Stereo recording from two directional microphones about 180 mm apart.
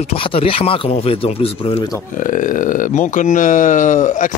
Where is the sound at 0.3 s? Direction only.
30° left (ahead or behind).